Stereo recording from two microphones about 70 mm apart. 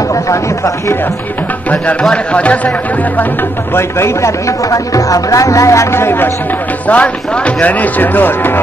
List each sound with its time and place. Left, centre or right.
2.0 s speech: centre
3.7 s speech: left
6.9 s speech: left